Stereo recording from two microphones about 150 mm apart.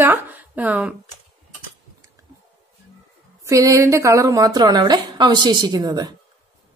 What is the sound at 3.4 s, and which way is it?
A woman's voice, 20° right (ahead or behind).